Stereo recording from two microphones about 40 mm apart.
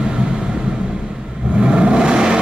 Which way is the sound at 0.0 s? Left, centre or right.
Right.